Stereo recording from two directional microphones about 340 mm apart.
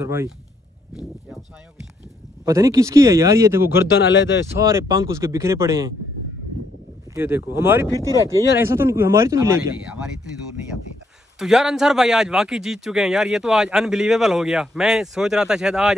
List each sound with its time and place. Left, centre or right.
0.0 s speech: centre
2.4 s speech: centre
4.0 s speech: left
4.6 s speech: centre
7.2 s speech: centre
7.9 s speech: centre
8.5 s speech: centre
11.3 s a man's voice: centre